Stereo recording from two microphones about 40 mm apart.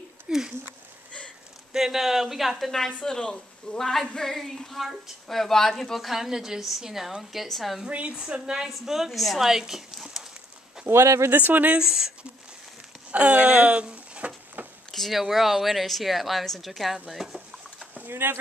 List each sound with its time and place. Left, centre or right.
0.3 s a sound: right
1.7 s speech: centre
2.7 s speech: centre
3.8 s a woman's voice: centre
8.3 s a woman's voice: right
8.6 s speech: centre
10.9 s speech: right
11.4 s speech: right
11.8 s speech: centre
13.1 s speech: right
14.9 s a sound: centre
15.1 s a woman's voice: centre
17.1 s a sound: centre
18.1 s speech: right